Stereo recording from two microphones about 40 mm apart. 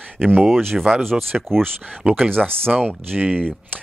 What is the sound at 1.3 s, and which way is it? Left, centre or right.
Speech, centre.